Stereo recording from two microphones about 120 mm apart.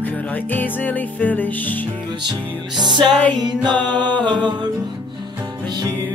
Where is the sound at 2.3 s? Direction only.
40° right (ahead or behind).